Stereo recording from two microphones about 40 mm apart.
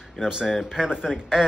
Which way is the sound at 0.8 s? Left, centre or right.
Centre.